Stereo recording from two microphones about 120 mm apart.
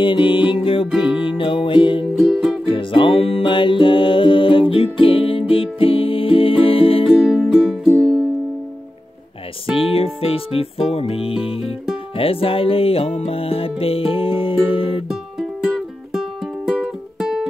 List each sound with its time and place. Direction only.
0.0 s music: 45° left (ahead or behind)
0.9 s music: 10° right (ahead or behind)
1.2 s music: 45° left (ahead or behind)
2.1 s music: centre (ahead or behind)
2.6 s music: 45° left (ahead or behind)
7.1 s music: centre (ahead or behind)
9.8 s music: 50° left (ahead or behind)
15.0 s music: 5° right (ahead or behind)